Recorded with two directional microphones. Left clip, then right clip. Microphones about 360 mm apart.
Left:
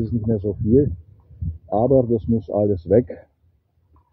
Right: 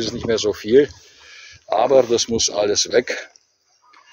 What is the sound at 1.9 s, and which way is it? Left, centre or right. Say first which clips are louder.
Speech: right 4 dB; right.